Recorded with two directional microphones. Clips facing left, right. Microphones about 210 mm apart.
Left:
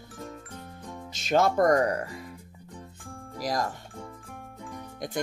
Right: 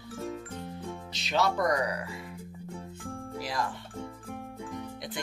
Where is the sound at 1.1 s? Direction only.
45° left (ahead or behind).